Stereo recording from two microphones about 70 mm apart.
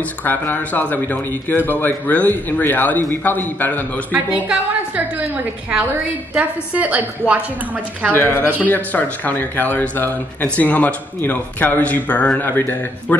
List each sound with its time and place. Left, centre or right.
0.2 s speech: left
4.9 s a woman's voice: right
8.1 s speech: left